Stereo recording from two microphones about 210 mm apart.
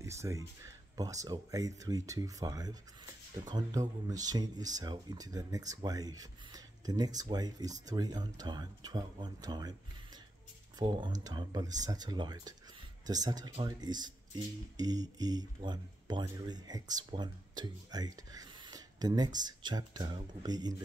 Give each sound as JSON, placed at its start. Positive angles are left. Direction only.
{"t": 0.0, "sound": "speech", "side_deg": -15}
{"t": 10.8, "sound": "speech", "side_deg": -20}